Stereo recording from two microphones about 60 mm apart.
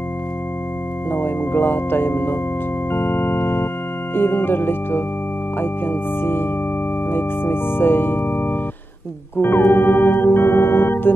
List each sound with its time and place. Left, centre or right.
1.1 s speech: left
2.9 s keyboard: left
4.1 s speech: left
7.1 s music: left